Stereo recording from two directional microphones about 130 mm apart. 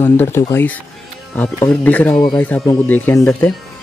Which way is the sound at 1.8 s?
10° left (ahead or behind).